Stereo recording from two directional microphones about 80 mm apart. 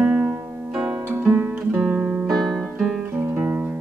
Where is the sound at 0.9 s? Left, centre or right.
Right.